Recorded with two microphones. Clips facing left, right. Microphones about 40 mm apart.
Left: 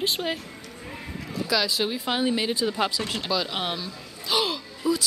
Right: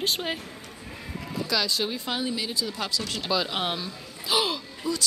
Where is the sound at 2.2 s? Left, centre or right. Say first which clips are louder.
Left 5 dB; left.